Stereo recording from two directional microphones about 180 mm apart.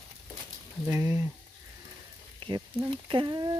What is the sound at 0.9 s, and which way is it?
Speech, 20° right (ahead or behind).